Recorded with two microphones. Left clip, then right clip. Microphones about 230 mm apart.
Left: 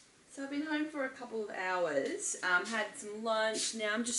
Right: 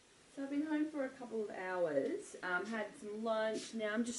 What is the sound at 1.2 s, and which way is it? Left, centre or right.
Speech, right.